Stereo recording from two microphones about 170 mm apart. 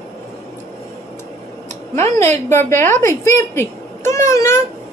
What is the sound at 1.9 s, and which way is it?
A woman's voice, 15° left (ahead or behind).